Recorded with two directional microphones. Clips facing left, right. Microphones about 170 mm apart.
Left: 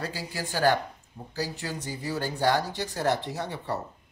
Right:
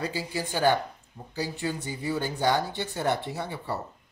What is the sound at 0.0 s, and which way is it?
Speech, 15° right (ahead or behind).